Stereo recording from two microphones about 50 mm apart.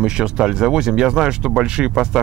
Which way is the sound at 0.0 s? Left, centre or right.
Centre.